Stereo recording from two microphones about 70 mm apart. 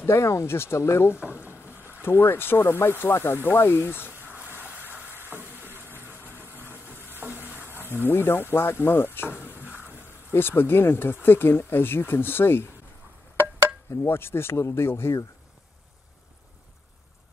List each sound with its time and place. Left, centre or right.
0.0 s speech: left
1.4 s boat: right
2.0 s speech: left
4.1 s a sound: right
6.3 s vehicle: right
7.2 s stir: right
7.9 s speech: left
9.7 s a sound: right
10.3 s speech: left
14.0 s speech: left